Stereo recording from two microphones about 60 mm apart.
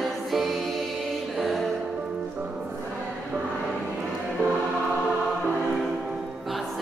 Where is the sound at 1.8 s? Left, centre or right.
Right.